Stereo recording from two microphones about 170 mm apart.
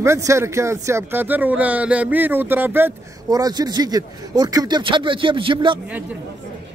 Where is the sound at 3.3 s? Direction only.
25° right (ahead or behind).